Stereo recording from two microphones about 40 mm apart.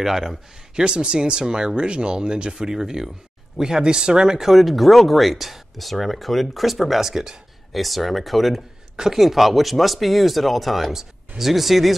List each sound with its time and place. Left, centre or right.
0.0 s speech: centre
0.7 s speech: right
4.5 s speech: centre
8.9 s speech: centre
9.2 s speech: centre
10.9 s speech: centre